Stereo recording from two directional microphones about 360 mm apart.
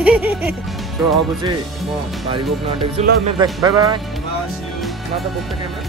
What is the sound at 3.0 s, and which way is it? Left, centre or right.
Music, centre.